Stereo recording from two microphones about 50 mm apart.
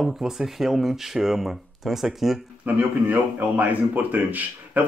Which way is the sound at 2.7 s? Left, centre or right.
Right.